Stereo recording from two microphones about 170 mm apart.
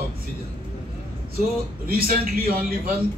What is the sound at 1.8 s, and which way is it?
A man's voice, 60° right (ahead or behind).